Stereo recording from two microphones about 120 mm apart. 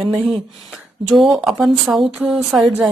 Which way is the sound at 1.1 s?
Centre (ahead or behind).